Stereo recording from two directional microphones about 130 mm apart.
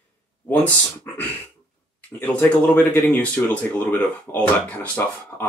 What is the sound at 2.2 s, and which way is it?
Speech, 10° left (ahead or behind).